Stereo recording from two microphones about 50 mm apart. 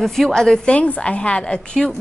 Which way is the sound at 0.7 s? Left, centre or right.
Left.